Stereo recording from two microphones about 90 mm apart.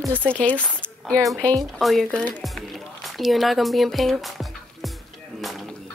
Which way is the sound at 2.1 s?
15° left (ahead or behind).